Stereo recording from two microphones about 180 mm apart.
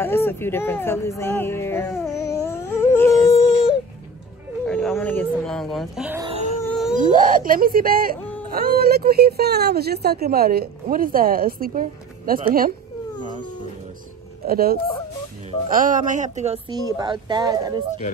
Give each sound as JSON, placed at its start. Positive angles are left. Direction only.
{"t": 0.0, "sound": "speech", "side_deg": 10}
{"t": 2.2, "sound": "a sound", "side_deg": 15}
{"t": 4.6, "sound": "speech", "side_deg": 0}
{"t": 6.2, "sound": "a sound", "side_deg": -35}
{"t": 6.7, "sound": "wail", "side_deg": 0}
{"t": 7.0, "sound": "speech", "side_deg": -45}
{"t": 8.2, "sound": "wail", "side_deg": 10}
{"t": 8.5, "sound": "a woman's voice", "side_deg": -55}
{"t": 14.4, "sound": "speech", "side_deg": -55}
{"t": 16.6, "sound": "speech", "side_deg": -25}